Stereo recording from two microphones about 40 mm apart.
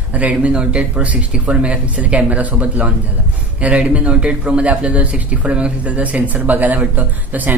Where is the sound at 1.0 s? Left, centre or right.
Right.